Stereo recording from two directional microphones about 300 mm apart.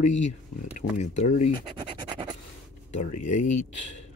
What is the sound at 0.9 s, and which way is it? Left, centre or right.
Speech, left.